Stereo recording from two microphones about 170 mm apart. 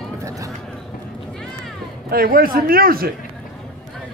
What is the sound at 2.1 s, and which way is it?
A man's voice, 60° right (ahead or behind).